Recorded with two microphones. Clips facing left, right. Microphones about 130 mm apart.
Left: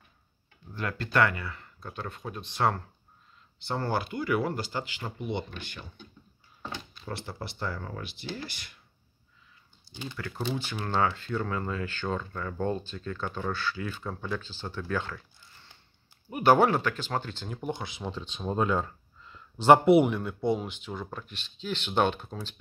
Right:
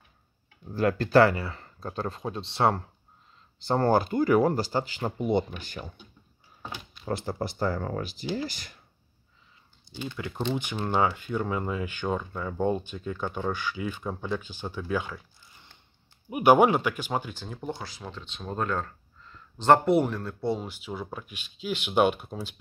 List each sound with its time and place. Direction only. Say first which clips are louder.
0.7 s speech: right 7 dB; 35° right (ahead or behind)
3.6 s speech: right 7 dB; 40° right (ahead or behind)
7.1 s speech: right 8 dB; 45° right (ahead or behind)
10.1 s speech: right 3 dB; 20° right (ahead or behind)
17.5 s speech: left 1 dB; 10° left (ahead or behind)
20.3 s speech: left 1 dB; 15° left (ahead or behind)
20.6 s speech: right 1 dB; 10° right (ahead or behind)